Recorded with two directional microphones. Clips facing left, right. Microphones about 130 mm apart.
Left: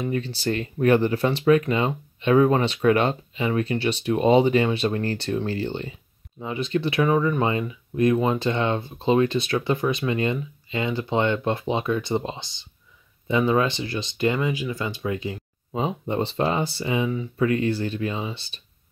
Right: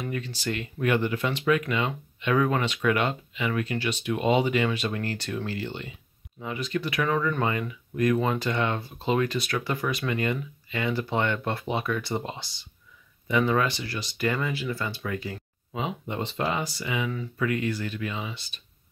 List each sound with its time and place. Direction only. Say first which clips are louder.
0.0 s speech: left 6 dB; 30° left (ahead or behind)
7.1 s speech: left 4 dB; 15° left (ahead or behind)
15.7 s speech: left 6 dB; 35° left (ahead or behind)